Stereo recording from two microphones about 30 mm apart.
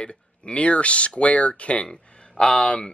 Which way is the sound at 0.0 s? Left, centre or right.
Left.